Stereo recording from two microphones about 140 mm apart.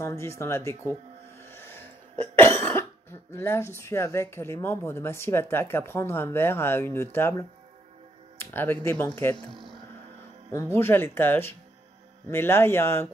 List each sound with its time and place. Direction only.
0.0 s speech: 20° left (ahead or behind)
1.4 s cough: 15° left (ahead or behind)
9.5 s a sound: centre (ahead or behind)
10.5 s cough: 15° left (ahead or behind)